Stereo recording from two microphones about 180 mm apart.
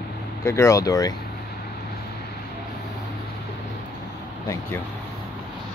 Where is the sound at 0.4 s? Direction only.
15° left (ahead or behind).